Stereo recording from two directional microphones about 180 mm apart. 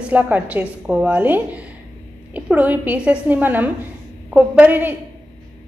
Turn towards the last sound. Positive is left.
turn(degrees=-10)  # may be behind; listen again after turning